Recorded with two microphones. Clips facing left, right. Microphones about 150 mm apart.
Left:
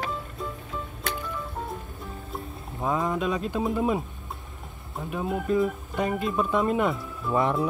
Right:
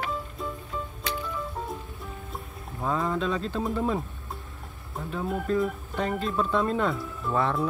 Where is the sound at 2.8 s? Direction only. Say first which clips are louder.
Left 1 dB; 15° left (ahead or behind).